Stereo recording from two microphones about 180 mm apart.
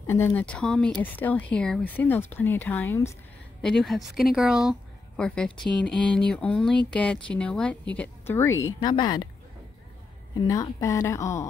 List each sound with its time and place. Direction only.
0.0 s speech: 10° left (ahead or behind)
3.6 s speech: centre (ahead or behind); by 9.3 s 25° left (ahead or behind)
10.3 s speech: 20° left (ahead or behind)